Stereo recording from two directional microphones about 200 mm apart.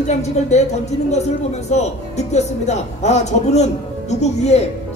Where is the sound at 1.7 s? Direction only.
35° left (ahead or behind).